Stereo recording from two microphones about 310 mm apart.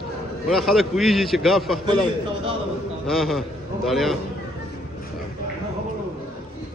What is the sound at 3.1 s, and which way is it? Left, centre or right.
A man's voice, centre.